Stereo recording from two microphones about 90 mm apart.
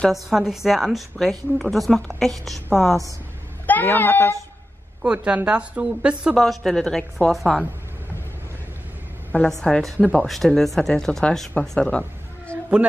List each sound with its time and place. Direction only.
0.1 s a woman's voice: 5° right (ahead or behind)
3.6 s speech: 20° left (ahead or behind)
5.0 s a woman's voice: 10° right (ahead or behind)
6.3 s a woman's voice: centre (ahead or behind)
9.5 s a woman's voice: 5° left (ahead or behind)
11.6 s cat: 5° left (ahead or behind)